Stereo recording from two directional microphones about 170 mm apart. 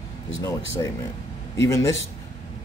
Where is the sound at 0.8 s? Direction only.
25° left (ahead or behind).